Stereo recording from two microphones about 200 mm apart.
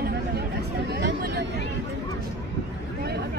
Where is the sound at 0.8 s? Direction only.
55° right (ahead or behind).